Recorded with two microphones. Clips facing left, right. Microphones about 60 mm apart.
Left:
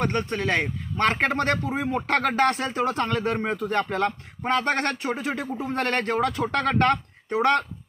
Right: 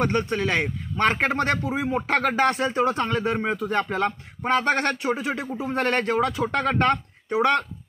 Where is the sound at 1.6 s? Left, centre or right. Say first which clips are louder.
Right 1 dB; centre.